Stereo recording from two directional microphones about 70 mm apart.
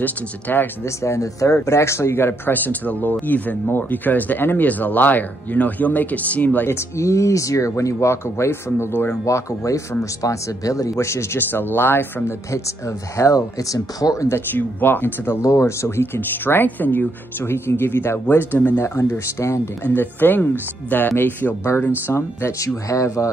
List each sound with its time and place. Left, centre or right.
0.0 s speech: left
0.8 s speech: left
6.7 s speech: left
9.2 s speech: left
12.5 s speech: left
14.3 s speech: left
15.4 s speech: left
19.9 s speech: left
22.0 s speech: left